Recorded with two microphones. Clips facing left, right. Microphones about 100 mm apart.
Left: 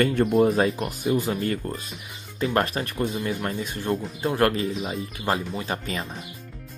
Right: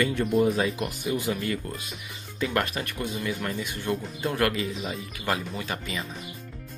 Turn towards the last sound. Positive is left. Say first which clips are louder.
# left 3 dB
turn(degrees=35)  # may be behind; listen again after turning